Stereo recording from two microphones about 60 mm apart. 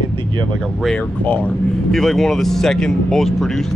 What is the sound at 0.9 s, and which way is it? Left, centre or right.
Speech, left.